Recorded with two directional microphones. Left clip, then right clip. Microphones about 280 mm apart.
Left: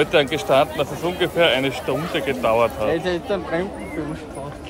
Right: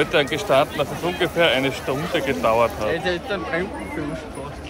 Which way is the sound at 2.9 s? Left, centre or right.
Left.